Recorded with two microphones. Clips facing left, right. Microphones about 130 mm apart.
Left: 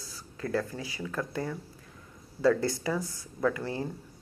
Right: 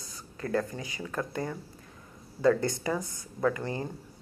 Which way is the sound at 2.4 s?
5° left (ahead or behind).